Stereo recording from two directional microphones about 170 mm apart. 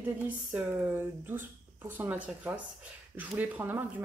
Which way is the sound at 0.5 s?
10° right (ahead or behind).